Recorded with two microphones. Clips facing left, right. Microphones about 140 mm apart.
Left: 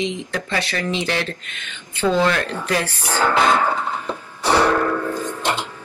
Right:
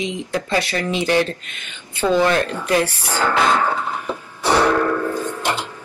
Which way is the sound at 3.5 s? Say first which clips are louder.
Even; 10° right (ahead or behind).